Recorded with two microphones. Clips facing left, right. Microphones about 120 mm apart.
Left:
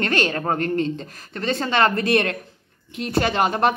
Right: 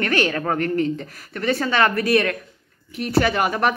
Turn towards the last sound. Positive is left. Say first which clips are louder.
# even
turn(degrees=25)  # may be behind; listen again after turning